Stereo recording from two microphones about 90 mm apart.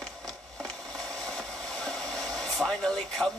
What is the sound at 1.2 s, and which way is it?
Hair dryer, 5° left (ahead or behind).